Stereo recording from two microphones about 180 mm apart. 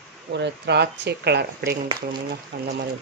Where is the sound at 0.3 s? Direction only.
70° right (ahead or behind).